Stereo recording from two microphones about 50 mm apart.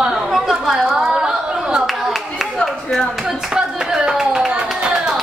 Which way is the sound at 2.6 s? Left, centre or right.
Centre.